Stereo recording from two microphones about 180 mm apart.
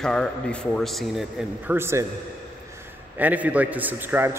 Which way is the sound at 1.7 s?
15° right (ahead or behind).